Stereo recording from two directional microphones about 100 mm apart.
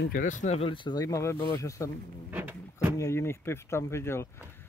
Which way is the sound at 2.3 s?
20° right (ahead or behind).